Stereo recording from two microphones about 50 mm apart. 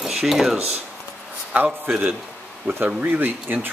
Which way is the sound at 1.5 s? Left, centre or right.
Right.